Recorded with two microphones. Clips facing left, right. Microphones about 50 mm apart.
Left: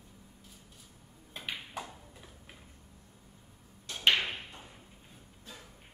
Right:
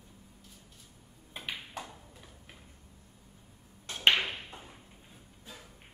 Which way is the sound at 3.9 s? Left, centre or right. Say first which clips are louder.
Right 1 dB; right.